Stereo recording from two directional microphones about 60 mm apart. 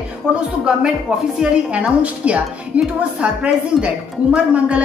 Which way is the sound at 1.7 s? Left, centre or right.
Right.